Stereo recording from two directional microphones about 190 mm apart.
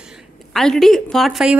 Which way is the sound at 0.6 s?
Centre (ahead or behind).